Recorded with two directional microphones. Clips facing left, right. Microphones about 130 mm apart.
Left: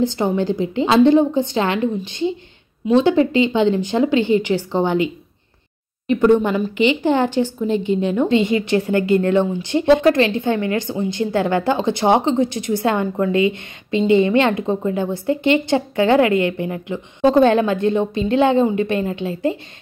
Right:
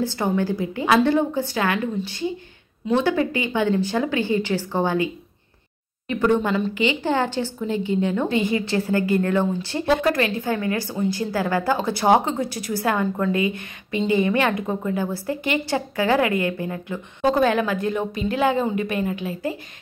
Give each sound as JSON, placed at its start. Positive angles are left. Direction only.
{"t": 0.0, "sound": "speech", "side_deg": 20}